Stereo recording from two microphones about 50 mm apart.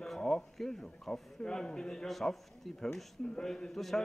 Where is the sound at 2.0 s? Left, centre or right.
Centre.